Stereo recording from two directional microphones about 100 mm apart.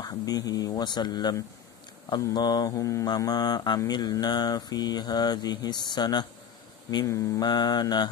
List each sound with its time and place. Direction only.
0.0 s mantra: 40° left (ahead or behind)
2.3 s mantra: 40° left (ahead or behind)
7.1 s mantra: 30° left (ahead or behind)
7.4 s mantra: 45° left (ahead or behind)